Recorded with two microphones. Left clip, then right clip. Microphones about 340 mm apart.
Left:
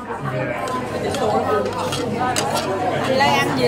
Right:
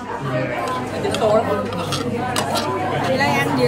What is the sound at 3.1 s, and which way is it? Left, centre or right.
Chatter, centre.